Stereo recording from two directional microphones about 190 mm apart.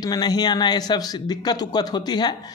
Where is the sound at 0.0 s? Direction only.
20° left (ahead or behind).